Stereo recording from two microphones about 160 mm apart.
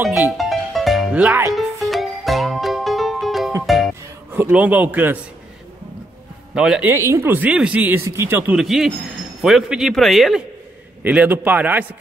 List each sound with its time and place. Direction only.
0.0 s music: 5° right (ahead or behind)
1.9 s music: centre (ahead or behind)
4.3 s speech: 10° right (ahead or behind)
6.5 s speech: 5° right (ahead or behind)
6.9 s speech: 15° right (ahead or behind)
8.5 s speech: centre (ahead or behind)